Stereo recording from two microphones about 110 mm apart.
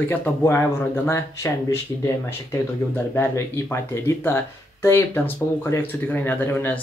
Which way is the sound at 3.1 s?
20° left (ahead or behind).